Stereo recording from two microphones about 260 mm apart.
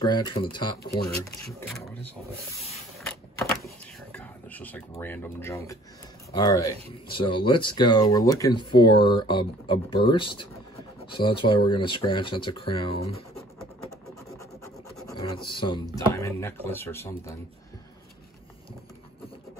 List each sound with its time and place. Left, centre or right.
0.0 s speech: centre
3.3 s power windows: centre
6.3 s speech: centre
15.3 s speech: centre